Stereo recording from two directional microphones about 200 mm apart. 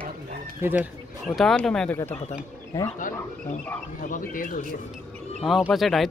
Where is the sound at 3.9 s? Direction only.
40° left (ahead or behind).